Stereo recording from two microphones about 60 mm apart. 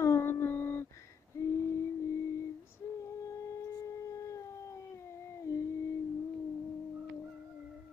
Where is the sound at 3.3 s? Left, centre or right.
Left.